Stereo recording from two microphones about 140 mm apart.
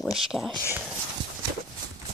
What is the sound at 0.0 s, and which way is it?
Speech, centre (ahead or behind).